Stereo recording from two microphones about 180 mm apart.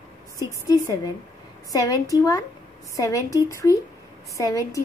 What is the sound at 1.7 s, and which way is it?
A woman's voice, 20° left (ahead or behind).